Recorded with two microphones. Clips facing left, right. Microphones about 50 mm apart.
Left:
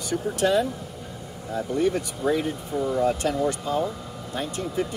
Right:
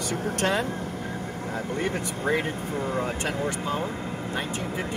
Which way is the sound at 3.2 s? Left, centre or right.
Right.